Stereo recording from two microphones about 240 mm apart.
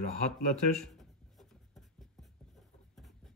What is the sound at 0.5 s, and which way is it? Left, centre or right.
Speech, centre.